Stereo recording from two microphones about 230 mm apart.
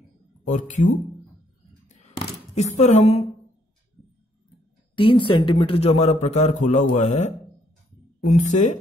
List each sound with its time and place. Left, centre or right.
0.5 s speech: left
2.6 s speech: left
4.9 s speech: left
8.4 s speech: left